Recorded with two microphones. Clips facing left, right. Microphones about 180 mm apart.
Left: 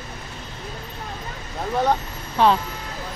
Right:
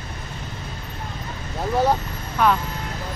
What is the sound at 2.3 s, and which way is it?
Speech, 30° left (ahead or behind).